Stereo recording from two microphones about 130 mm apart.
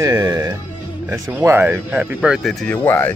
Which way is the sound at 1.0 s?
15° right (ahead or behind).